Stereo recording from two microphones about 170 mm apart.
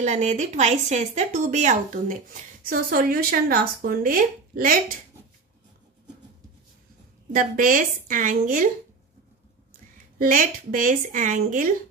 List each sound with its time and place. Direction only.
0.0 s speech: 40° right (ahead or behind)
2.6 s speech: 55° right (ahead or behind)
7.3 s speech: 55° right (ahead or behind)
10.1 s speech: 55° right (ahead or behind)